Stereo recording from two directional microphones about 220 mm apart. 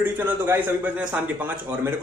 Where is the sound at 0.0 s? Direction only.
10° right (ahead or behind).